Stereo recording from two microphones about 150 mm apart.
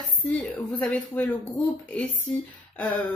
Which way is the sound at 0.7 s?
10° left (ahead or behind).